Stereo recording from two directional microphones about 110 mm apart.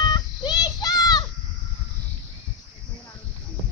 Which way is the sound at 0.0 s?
40° left (ahead or behind).